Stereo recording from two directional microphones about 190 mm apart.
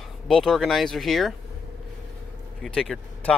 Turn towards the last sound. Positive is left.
turn(degrees=0)  # may be behind; listen again after turning